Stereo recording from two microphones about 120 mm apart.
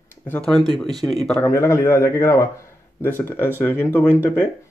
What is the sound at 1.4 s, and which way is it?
Speech, 25° left (ahead or behind).